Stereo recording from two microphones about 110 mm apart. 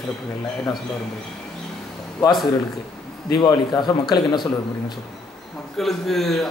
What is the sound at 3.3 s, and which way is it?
Speech, 40° left (ahead or behind).